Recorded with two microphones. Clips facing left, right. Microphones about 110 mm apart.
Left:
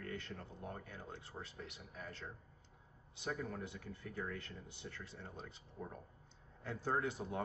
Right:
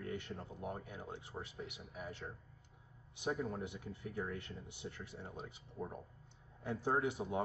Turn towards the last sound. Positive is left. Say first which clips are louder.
# right 3 dB
turn(degrees=-15)  # may be behind; listen again after turning